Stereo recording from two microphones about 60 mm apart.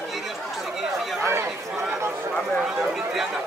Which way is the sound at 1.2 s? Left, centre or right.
Right.